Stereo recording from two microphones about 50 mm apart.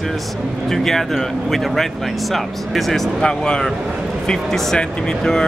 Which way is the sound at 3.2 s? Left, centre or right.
Centre.